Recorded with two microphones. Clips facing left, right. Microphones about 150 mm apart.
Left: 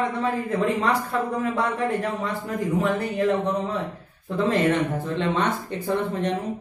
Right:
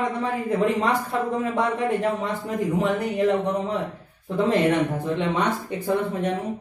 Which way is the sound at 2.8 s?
20° right (ahead or behind).